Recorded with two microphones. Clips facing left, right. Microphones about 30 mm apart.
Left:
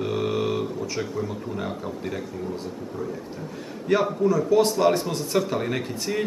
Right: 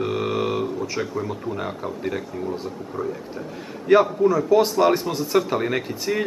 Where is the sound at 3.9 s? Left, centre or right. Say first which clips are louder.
Right 5 dB; centre.